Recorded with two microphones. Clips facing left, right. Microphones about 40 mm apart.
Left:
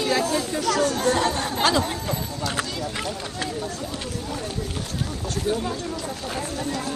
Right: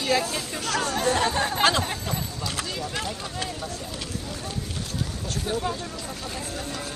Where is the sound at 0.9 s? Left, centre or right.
Centre.